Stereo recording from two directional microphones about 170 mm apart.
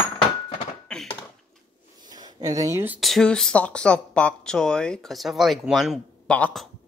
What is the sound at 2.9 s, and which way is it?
Speech, centre (ahead or behind).